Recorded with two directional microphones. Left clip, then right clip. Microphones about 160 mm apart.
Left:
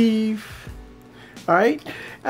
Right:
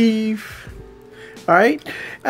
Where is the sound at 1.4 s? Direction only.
25° right (ahead or behind).